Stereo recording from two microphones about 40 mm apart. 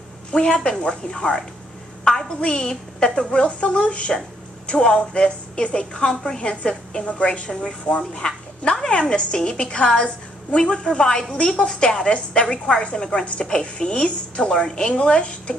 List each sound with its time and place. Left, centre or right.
0.3 s a woman's voice: left